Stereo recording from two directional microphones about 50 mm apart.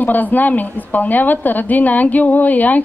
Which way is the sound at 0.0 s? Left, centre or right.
Left.